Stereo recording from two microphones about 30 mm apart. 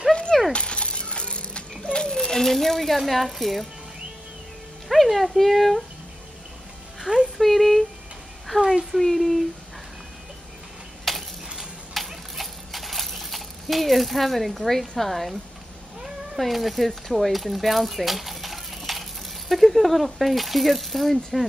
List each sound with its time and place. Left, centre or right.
0.5 s music: left
1.8 s a sound: left; by 3.0 s centre
3.1 s speech: centre
4.8 s speech: centre
7.3 s a sound: centre
8.6 s speech: centre
9.0 s speech: centre
11.1 s a sound: centre
14.7 s speech: centre
16.3 s speech: centre